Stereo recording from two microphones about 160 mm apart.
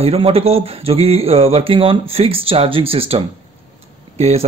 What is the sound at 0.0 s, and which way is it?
Speech, 40° right (ahead or behind).